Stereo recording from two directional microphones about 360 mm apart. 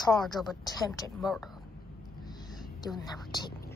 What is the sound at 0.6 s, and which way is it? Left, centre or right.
Speech, centre.